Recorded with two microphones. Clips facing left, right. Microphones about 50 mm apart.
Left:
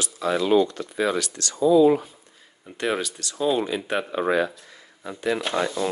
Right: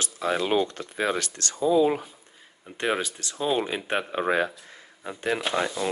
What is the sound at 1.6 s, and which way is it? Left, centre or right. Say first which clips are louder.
Speech: left 5 dB; right.